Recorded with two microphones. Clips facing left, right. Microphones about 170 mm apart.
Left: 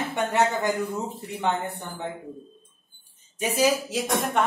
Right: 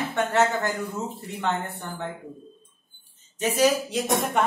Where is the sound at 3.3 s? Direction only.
10° left (ahead or behind).